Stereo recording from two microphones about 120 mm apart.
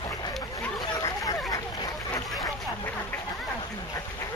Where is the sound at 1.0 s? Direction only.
30° left (ahead or behind).